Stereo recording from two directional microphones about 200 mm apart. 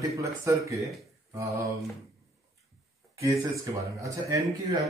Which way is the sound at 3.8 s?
15° right (ahead or behind).